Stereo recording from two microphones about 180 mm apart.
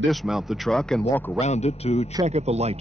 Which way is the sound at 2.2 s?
35° right (ahead or behind).